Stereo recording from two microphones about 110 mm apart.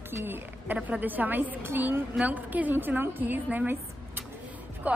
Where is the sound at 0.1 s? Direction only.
20° right (ahead or behind).